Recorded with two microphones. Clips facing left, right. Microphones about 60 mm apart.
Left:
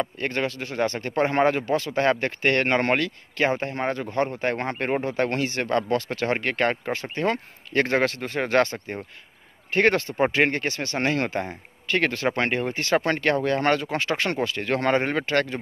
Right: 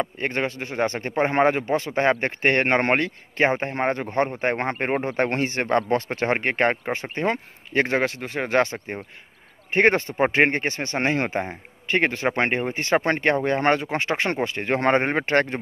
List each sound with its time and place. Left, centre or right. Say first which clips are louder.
0.0 s speech: right 1 dB; right